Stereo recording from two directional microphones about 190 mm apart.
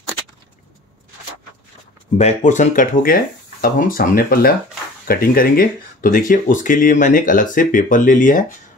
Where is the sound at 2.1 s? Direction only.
40° left (ahead or behind).